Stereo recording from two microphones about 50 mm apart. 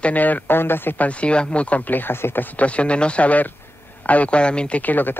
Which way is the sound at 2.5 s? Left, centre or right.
Left.